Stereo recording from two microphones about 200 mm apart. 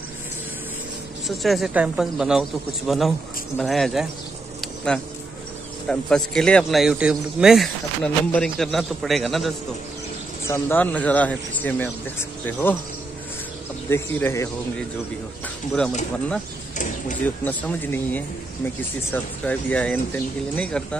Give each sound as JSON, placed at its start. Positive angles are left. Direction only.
{"t": 1.2, "sound": "speech", "side_deg": 0}
{"t": 4.6, "sound": "a sound", "side_deg": 0}
{"t": 5.9, "sound": "speech", "side_deg": 5}
{"t": 10.4, "sound": "speech", "side_deg": 10}
{"t": 13.8, "sound": "speech", "side_deg": 10}
{"t": 16.7, "sound": "a sound", "side_deg": 40}
{"t": 17.5, "sound": "speech", "side_deg": 10}